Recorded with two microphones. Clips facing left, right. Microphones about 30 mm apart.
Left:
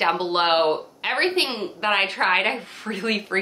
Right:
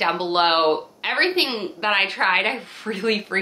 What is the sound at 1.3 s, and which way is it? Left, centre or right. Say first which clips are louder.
Speech: right 1 dB; right.